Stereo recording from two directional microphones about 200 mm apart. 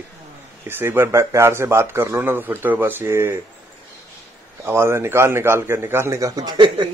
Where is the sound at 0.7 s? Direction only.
10° right (ahead or behind).